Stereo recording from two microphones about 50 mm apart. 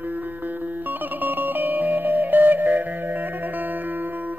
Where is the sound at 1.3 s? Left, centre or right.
Right.